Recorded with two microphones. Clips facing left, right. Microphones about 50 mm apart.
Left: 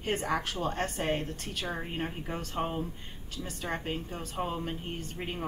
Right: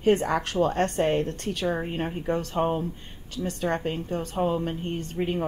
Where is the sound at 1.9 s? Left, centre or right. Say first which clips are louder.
Right 8 dB; right.